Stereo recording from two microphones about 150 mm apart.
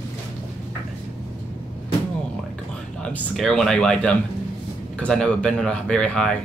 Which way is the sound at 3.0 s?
5° left (ahead or behind).